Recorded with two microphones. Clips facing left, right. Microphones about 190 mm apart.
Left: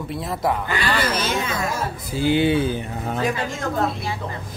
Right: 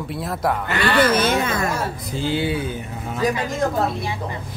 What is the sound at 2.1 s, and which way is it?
Speech, 15° left (ahead or behind).